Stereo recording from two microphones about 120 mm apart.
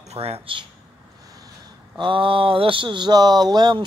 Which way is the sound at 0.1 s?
60° right (ahead or behind).